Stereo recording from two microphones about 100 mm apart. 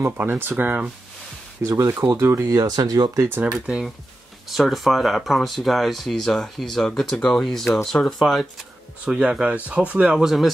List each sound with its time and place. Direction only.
0.0 s speech: 20° right (ahead or behind)
1.7 s speech: 30° right (ahead or behind)
3.6 s speech: 5° right (ahead or behind)
9.0 s speech: 10° right (ahead or behind)